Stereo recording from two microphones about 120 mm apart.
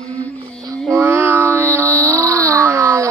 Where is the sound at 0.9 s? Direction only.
15° right (ahead or behind).